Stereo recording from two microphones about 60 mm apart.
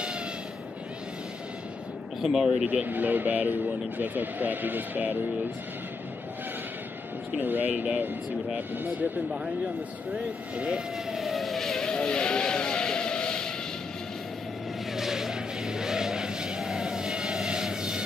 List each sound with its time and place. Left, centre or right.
2.2 s speech: centre
2.7 s speech: right
7.3 s speech: right
10.1 s speech: centre
11.1 s vehicle: centre
15.0 s vehicle: centre